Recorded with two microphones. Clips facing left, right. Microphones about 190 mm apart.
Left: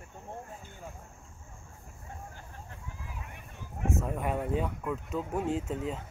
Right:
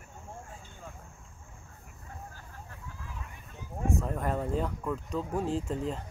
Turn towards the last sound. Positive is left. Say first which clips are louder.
# right 1 dB
turn(degrees=0)  # may be behind; listen again after turning